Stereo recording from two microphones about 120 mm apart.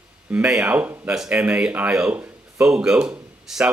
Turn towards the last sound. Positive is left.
turn(degrees=-10)  # may be behind; listen again after turning